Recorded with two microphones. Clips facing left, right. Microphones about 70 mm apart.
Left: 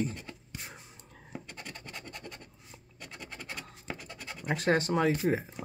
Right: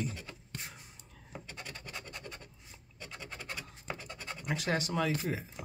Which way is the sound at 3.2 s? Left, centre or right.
Centre.